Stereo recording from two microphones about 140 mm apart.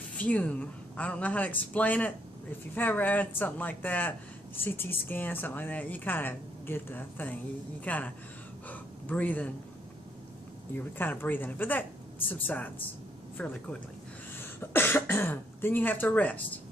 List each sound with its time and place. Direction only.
0.2 s speech: 10° left (ahead or behind)
8.6 s gasp: 10° left (ahead or behind)
11.0 s speech: 15° left (ahead or behind)